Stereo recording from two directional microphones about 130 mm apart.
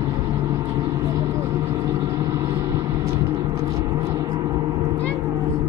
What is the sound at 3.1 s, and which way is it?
Gong, 30° right (ahead or behind).